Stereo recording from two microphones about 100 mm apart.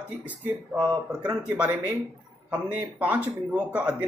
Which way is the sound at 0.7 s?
50° right (ahead or behind).